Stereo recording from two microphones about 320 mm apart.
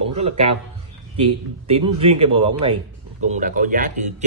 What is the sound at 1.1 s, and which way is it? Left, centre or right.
A man's voice, centre.